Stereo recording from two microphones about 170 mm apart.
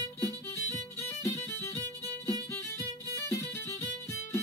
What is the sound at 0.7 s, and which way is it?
Music, 15° left (ahead or behind).